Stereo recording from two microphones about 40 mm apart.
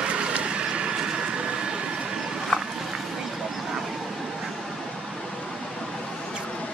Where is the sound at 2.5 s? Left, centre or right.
Centre.